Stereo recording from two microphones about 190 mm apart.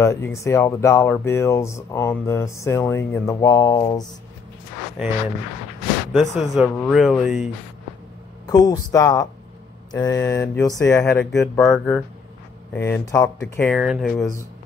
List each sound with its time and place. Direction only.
0.0 s speech: 15° left (ahead or behind)
6.3 s speech: centre (ahead or behind)
8.5 s speech: 20° left (ahead or behind)
13.4 s speech: 5° left (ahead or behind)